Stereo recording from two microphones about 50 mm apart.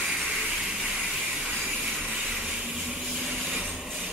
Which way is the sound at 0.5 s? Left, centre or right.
Centre.